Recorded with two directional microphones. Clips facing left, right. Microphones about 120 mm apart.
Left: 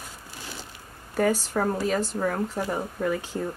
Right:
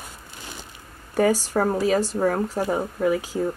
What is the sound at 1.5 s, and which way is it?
Speech, 30° right (ahead or behind).